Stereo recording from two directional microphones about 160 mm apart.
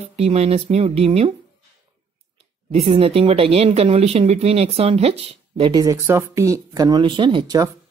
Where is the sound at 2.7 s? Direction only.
40° right (ahead or behind).